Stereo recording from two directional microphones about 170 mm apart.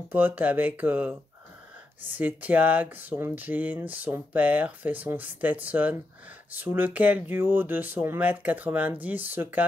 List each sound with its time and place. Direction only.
0.1 s speech: 10° right (ahead or behind)
2.1 s speech: 10° right (ahead or behind)